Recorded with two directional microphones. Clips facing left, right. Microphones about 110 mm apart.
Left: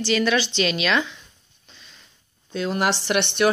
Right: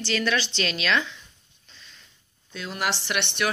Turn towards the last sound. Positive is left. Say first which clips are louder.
# left 7 dB
turn(degrees=35)  # may be behind; listen again after turning